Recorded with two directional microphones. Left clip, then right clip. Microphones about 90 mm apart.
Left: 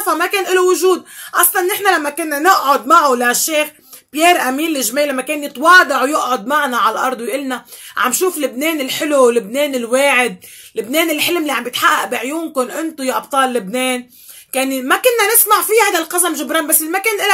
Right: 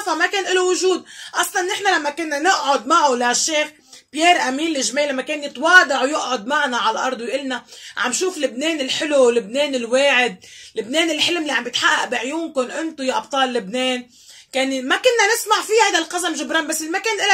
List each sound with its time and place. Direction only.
0.0 s speech: 35° left (ahead or behind)